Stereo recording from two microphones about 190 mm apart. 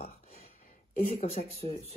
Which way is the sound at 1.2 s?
35° left (ahead or behind).